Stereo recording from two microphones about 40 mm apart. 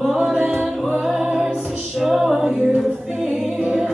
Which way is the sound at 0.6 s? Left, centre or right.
Centre.